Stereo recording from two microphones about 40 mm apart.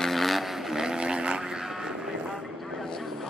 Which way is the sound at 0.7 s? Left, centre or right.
Centre.